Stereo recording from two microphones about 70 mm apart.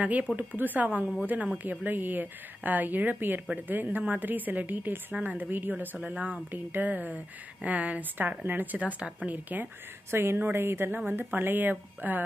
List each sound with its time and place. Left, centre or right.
0.0 s a woman's voice: right
10.1 s a woman's voice: right